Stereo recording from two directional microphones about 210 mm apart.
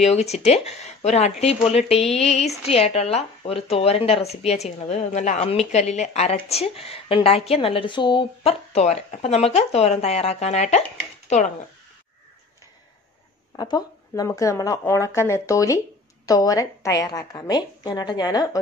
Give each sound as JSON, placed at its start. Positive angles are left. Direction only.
{"t": 0.0, "sound": "speech", "side_deg": 30}
{"t": 13.6, "sound": "a woman's voice", "side_deg": 20}